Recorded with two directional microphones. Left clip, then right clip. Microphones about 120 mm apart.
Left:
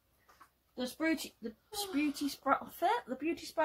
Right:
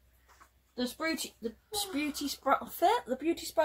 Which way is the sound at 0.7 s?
25° right (ahead or behind).